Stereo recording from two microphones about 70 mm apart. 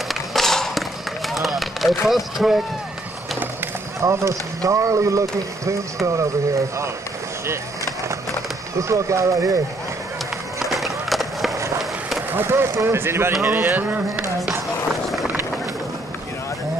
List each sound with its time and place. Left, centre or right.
0.1 s a sound: centre
4.0 s speech: right
8.7 s speech: right
10.7 s skateboard: centre
12.3 s speech: right